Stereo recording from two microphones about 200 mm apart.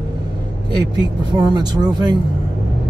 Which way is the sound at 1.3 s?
20° right (ahead or behind).